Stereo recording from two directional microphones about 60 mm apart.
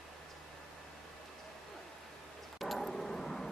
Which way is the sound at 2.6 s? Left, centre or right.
Centre.